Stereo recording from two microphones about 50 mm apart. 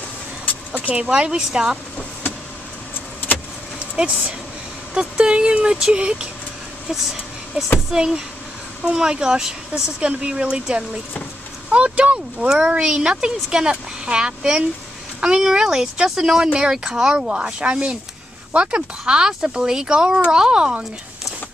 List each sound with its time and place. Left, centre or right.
0.7 s speech: right
3.8 s speech: right
6.9 s vehicle: centre
7.9 s speech: centre
17.3 s speech: right